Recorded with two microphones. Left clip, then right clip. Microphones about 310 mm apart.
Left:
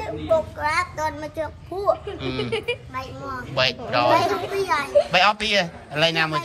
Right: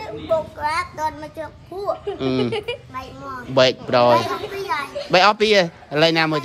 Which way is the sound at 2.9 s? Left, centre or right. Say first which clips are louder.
Even; centre.